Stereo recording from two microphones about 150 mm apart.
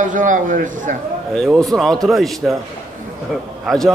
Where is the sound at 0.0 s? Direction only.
60° right (ahead or behind).